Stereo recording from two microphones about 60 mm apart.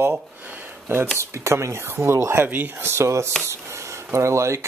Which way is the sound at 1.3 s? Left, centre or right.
Right.